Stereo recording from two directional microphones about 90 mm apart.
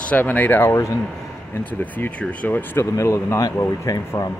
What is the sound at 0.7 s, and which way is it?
Speech, 35° left (ahead or behind).